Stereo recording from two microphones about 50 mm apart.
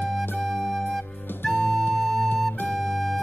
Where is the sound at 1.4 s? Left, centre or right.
Left.